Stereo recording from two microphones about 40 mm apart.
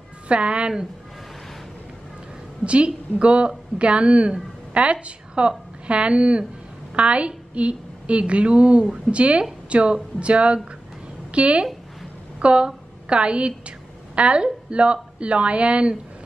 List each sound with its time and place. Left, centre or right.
0.3 s a woman's voice: right
2.6 s a woman's voice: right